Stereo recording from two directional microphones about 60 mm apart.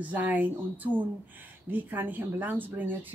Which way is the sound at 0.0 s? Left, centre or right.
Right.